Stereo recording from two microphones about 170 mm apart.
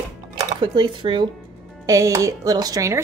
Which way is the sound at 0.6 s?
25° right (ahead or behind).